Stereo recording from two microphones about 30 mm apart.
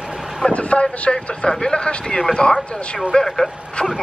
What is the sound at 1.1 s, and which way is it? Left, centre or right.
Speech, left.